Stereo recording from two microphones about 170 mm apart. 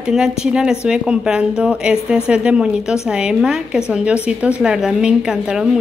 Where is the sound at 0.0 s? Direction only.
5° right (ahead or behind).